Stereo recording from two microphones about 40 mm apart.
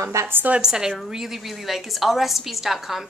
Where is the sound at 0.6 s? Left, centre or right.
Centre.